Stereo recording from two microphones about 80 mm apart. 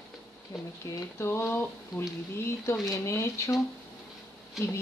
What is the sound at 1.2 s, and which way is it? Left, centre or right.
A woman's voice, left.